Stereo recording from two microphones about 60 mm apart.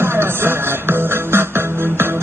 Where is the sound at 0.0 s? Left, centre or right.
Right.